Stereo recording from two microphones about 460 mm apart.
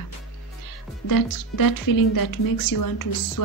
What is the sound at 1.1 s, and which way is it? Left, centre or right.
Speech, left.